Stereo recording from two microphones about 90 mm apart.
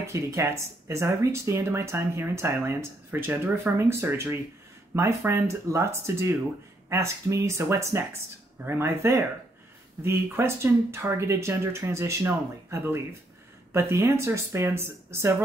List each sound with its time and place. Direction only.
0.0 s speech: 30° right (ahead or behind)